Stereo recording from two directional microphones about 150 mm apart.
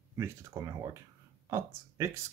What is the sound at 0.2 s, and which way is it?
Speech, 20° right (ahead or behind).